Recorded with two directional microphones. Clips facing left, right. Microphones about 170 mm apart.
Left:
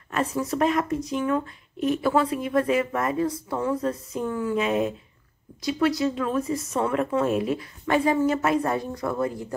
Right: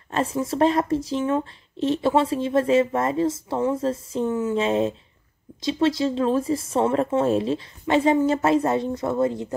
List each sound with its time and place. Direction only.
0.1 s speech: 30° right (ahead or behind)